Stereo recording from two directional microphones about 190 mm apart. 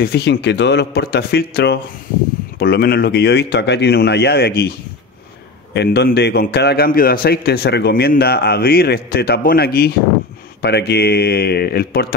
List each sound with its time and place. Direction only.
0.0 s a man's voice: 60° left (ahead or behind)